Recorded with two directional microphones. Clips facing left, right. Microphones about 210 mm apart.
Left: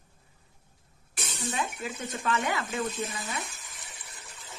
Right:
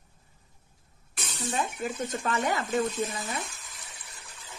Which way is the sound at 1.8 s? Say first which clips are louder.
Right 4 dB; 45° right (ahead or behind).